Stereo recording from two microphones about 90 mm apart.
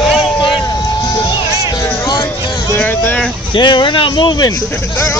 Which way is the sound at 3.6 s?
60° left (ahead or behind).